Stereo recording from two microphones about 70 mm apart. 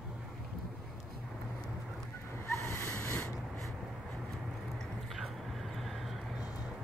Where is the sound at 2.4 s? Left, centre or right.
Left.